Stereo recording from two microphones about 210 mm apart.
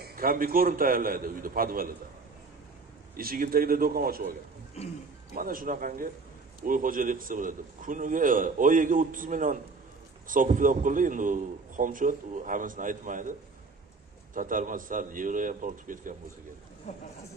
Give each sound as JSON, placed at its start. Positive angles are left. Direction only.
{"t": 0.0, "sound": "a man's voice", "side_deg": -45}
{"t": 3.2, "sound": "a man's voice", "side_deg": -45}
{"t": 14.3, "sound": "a man's voice", "side_deg": -40}
{"t": 16.9, "sound": "speech", "side_deg": 35}